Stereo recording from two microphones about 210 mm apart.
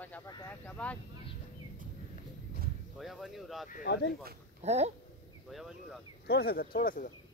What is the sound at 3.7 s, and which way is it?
Speech, 50° left (ahead or behind).